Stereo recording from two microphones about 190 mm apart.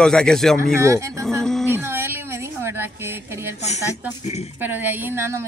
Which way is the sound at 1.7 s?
10° right (ahead or behind).